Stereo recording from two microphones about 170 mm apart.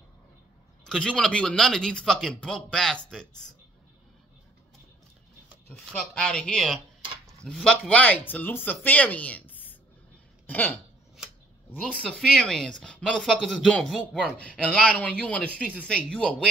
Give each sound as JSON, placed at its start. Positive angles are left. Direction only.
{"t": 0.8, "sound": "speech", "side_deg": 5}
{"t": 5.9, "sound": "speech", "side_deg": 5}
{"t": 11.7, "sound": "speech", "side_deg": 5}